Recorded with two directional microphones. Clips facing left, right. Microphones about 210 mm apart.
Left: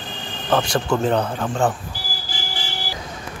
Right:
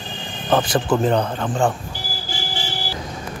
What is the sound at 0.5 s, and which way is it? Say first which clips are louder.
Speech: right 2 dB; centre (ahead or behind).